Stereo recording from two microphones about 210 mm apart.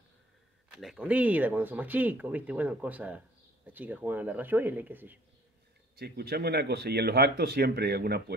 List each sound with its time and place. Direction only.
0.7 s speech: 5° right (ahead or behind)
5.9 s speech: 50° right (ahead or behind)